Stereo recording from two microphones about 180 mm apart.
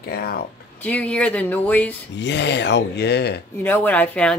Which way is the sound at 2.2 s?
75° left (ahead or behind).